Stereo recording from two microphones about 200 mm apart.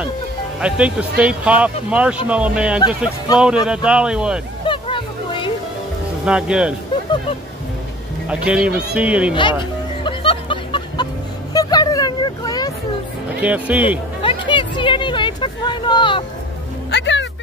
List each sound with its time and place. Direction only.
0.6 s speech: 5° right (ahead or behind)
4.6 s music: 25° left (ahead or behind)
6.2 s speech: 5° right (ahead or behind)
8.3 s speech: 5° right (ahead or behind)
9.3 s music: 25° left (ahead or behind)
11.5 s a sound: 20° left (ahead or behind)
13.4 s speech: 5° right (ahead or behind)
14.2 s a sound: 25° left (ahead or behind)
16.9 s music: 65° left (ahead or behind)